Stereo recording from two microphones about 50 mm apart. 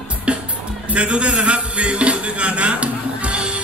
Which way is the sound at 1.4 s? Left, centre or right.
Right.